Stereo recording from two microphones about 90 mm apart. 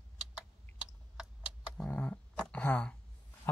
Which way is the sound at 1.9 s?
15° left (ahead or behind).